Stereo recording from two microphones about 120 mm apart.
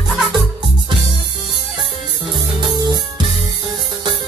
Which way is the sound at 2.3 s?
40° right (ahead or behind).